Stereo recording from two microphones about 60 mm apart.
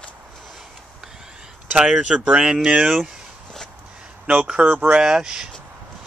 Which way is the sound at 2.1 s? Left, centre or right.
Centre.